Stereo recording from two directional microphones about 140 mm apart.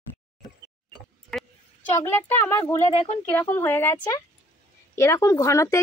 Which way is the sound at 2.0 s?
20° left (ahead or behind).